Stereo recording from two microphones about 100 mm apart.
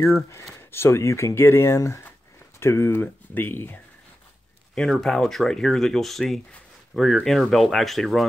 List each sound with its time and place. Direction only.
0.3 s speech: 25° left (ahead or behind)
4.7 s speech: 5° left (ahead or behind)